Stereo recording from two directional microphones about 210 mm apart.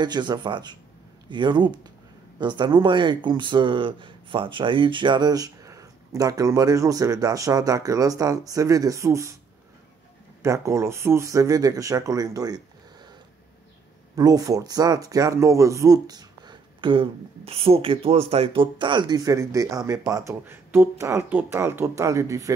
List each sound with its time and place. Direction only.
0.0 s speech: 20° right (ahead or behind)
10.4 s speech: 15° right (ahead or behind)
14.1 s speech: 15° right (ahead or behind)